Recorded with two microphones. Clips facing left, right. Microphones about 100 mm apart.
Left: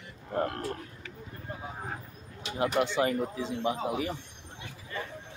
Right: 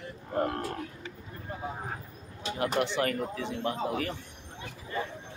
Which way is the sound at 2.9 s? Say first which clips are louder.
Left 2 dB; 15° left (ahead or behind).